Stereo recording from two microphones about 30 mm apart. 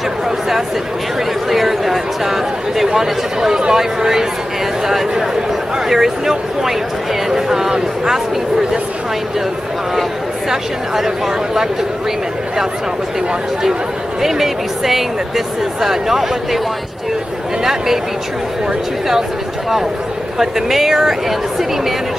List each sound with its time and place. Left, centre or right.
1.5 s a sound: centre
3.0 s speech: centre
5.9 s speech: centre
14.2 s speech: centre
20.3 s speech: centre